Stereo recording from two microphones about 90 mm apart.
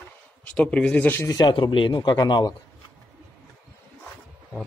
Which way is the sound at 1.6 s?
70° left (ahead or behind).